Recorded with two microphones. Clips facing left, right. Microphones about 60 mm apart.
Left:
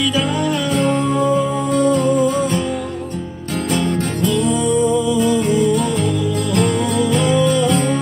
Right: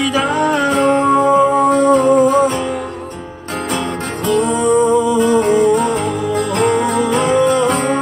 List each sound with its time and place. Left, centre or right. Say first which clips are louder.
0.1 s music: right 4 dB; right
0.7 s music: right 4 dB; right
2.1 s music: right 5 dB; right
4.3 s music: right 5 dB; right